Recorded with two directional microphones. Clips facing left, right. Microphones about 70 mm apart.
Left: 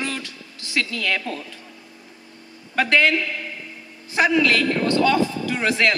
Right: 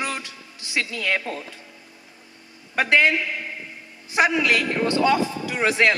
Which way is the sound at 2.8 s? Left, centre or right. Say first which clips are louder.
Even; centre.